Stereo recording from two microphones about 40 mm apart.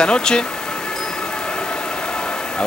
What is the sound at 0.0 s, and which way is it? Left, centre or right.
Speech, centre.